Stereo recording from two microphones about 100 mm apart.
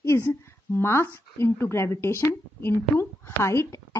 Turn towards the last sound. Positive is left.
turn(degrees=30)  # may be behind; listen again after turning